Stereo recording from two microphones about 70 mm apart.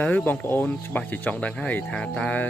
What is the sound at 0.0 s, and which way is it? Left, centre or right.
Speech, left.